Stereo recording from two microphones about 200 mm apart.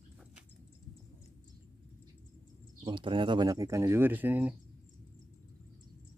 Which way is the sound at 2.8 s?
25° right (ahead or behind).